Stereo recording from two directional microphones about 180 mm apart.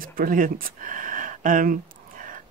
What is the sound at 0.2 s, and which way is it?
Speech, 50° right (ahead or behind).